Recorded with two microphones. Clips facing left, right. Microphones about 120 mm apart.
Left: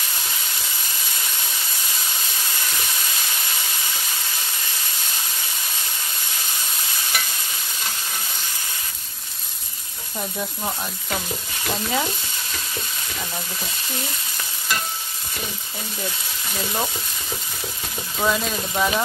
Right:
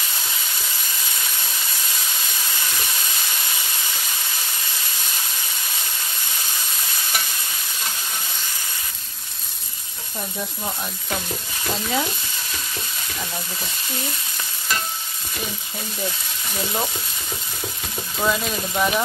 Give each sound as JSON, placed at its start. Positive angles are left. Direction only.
{"t": 11.7, "sound": "speech", "side_deg": 5}
{"t": 18.2, "sound": "speech", "side_deg": 0}